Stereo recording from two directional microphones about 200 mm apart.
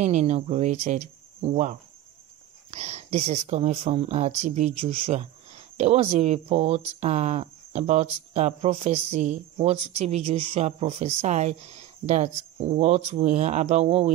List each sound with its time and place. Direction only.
0.0 s speech: 35° right (ahead or behind)